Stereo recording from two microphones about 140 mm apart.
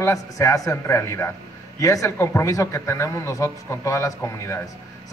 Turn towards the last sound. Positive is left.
turn(degrees=20)  # may be behind; listen again after turning